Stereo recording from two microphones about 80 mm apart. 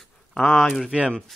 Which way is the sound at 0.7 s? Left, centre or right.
Centre.